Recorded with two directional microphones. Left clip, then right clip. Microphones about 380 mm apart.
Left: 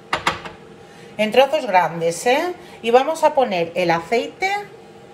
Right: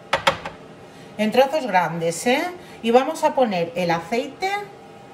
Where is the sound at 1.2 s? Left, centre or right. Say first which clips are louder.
Left 3 dB; centre.